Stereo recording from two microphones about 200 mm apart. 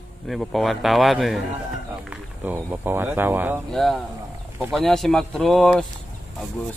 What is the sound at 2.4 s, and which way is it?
Speech, 10° right (ahead or behind).